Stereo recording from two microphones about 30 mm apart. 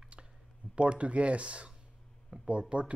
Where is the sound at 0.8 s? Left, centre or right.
Right.